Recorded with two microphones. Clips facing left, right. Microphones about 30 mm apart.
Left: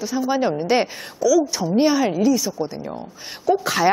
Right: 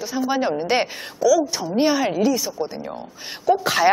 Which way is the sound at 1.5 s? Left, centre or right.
Centre.